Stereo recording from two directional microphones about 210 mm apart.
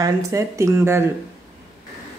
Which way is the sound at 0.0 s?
15° right (ahead or behind).